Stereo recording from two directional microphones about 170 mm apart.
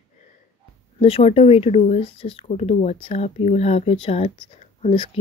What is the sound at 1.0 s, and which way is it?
Speech, 35° left (ahead or behind).